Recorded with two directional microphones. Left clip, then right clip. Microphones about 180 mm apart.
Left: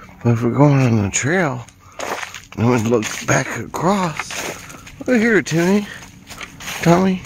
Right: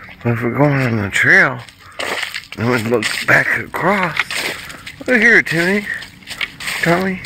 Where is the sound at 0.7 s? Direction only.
40° left (ahead or behind).